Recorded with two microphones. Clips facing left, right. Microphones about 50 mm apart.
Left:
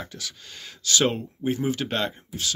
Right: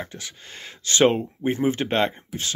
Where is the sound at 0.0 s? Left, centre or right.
Right.